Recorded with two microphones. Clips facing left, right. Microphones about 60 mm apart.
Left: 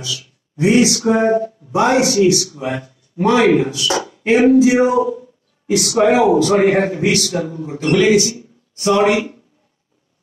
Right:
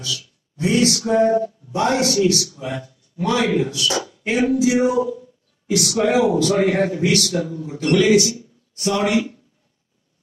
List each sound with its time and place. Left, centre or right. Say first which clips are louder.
0.0 s a man's voice: left 1 dB; left